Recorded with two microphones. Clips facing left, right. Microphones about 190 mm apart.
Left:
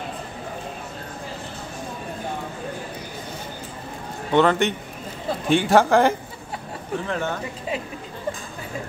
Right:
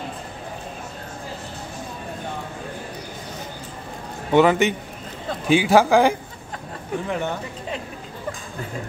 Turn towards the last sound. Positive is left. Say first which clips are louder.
# right 1 dB
turn(degrees=-15)  # may be behind; listen again after turning